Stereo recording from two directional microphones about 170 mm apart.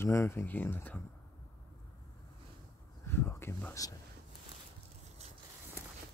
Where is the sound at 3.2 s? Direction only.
15° left (ahead or behind).